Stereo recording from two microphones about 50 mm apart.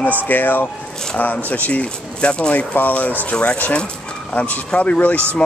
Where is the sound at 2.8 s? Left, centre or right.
Left.